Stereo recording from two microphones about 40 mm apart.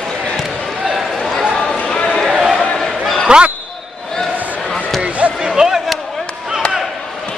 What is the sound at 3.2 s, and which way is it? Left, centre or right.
Speech, right.